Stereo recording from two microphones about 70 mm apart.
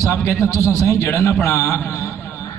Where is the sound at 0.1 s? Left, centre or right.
Left.